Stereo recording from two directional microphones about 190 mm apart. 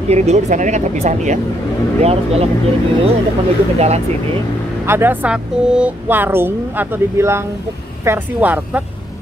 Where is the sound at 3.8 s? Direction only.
35° right (ahead or behind).